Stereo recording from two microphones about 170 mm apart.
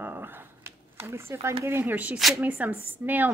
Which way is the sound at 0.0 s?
10° right (ahead or behind).